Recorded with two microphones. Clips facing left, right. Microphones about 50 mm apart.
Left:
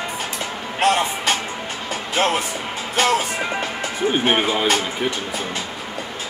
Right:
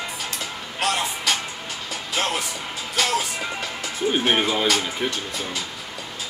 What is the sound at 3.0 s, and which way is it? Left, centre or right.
Music, left.